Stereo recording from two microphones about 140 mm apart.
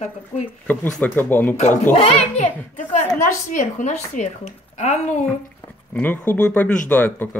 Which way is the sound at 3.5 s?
60° left (ahead or behind).